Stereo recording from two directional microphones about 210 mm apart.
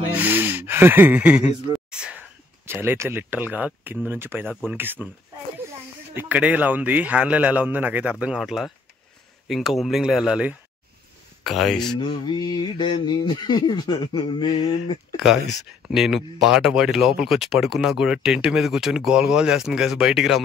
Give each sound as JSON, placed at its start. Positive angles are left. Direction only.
{"t": 0.1, "sound": "gasp", "side_deg": -10}
{"t": 1.9, "sound": "a man's voice", "side_deg": -5}
{"t": 6.1, "sound": "a man's voice", "side_deg": -5}
{"t": 12.0, "sound": "a sound", "side_deg": 20}
{"t": 15.9, "sound": "speech", "side_deg": 0}